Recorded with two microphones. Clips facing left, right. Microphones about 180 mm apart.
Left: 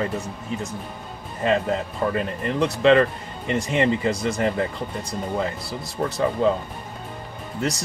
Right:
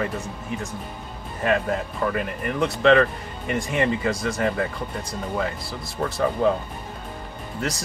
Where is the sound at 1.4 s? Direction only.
25° left (ahead or behind).